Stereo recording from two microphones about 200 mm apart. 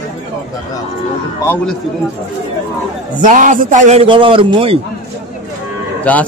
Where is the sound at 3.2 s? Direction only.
40° right (ahead or behind).